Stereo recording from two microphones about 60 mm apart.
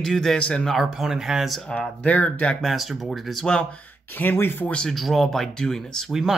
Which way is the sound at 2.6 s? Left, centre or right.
Centre.